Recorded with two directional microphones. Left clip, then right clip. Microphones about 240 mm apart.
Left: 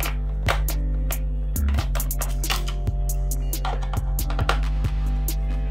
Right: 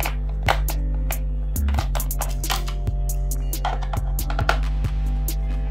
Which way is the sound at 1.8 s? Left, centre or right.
Centre.